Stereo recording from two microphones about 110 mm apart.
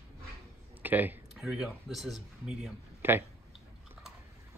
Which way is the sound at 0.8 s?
15° right (ahead or behind).